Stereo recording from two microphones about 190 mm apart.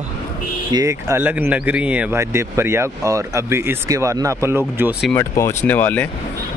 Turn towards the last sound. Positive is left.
turn(degrees=10)  # may be behind; listen again after turning